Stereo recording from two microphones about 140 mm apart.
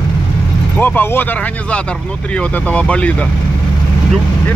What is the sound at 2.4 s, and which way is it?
Speech, 10° left (ahead or behind).